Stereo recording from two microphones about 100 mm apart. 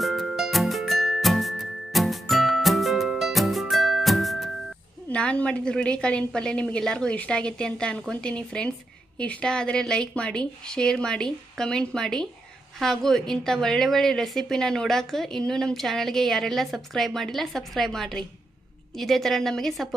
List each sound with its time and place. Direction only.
0.0 s music: centre (ahead or behind)
5.1 s a woman's voice: 10° left (ahead or behind)